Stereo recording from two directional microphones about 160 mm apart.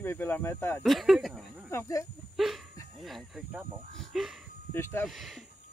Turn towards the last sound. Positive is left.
turn(degrees=0)  # may be behind; listen again after turning